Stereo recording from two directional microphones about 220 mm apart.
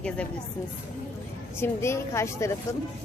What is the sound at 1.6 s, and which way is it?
Speech, 10° left (ahead or behind).